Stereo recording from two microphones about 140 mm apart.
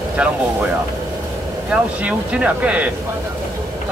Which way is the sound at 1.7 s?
10° right (ahead or behind).